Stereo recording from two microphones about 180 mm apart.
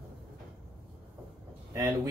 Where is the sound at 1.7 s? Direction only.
20° right (ahead or behind).